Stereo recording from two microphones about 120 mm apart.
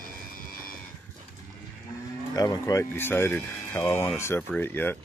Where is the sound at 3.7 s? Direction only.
30° left (ahead or behind); by 4.9 s 15° left (ahead or behind).